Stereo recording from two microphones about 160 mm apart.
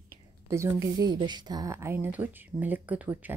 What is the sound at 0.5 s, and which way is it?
A woman's voice, 20° right (ahead or behind).